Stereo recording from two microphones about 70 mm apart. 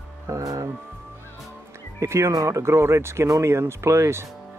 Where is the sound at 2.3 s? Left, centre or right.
Right.